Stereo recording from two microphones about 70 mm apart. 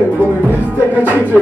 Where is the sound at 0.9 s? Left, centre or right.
Right.